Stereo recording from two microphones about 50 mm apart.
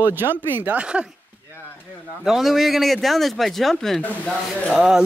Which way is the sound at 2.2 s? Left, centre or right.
Centre.